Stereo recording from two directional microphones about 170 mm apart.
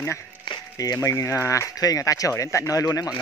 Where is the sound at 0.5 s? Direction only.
20° left (ahead or behind).